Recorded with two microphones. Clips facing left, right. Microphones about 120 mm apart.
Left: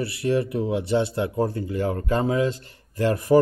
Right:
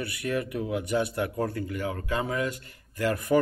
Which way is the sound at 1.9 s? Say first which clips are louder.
Left 8 dB; 35° left (ahead or behind).